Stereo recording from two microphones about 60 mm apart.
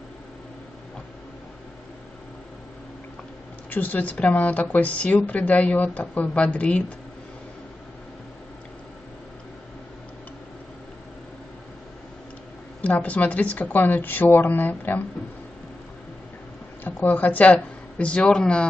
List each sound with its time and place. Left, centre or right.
3.7 s speech: left
12.8 s speech: left
16.8 s speech: left